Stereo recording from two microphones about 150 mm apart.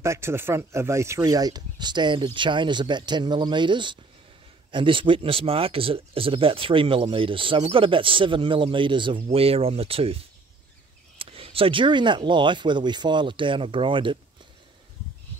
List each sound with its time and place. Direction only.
0.0 s speech: 20° right (ahead or behind); by 14.1 s 35° right (ahead or behind)